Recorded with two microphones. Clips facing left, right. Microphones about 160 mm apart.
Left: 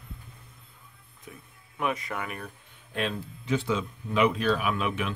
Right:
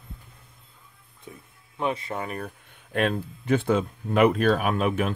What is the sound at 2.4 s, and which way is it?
Speech, 55° right (ahead or behind).